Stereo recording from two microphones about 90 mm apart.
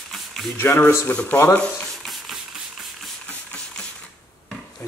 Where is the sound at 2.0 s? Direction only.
Centre (ahead or behind).